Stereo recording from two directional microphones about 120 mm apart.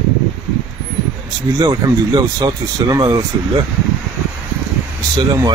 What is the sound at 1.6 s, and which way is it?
Speech, 30° right (ahead or behind).